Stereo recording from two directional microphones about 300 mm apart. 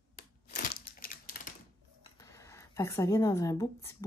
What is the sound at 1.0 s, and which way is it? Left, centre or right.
Crumpling, left.